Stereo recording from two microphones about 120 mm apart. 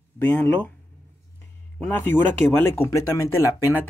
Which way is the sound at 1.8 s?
15° left (ahead or behind).